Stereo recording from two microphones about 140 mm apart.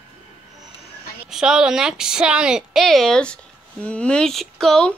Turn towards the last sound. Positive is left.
turn(degrees=5)  # may be behind; listen again after turning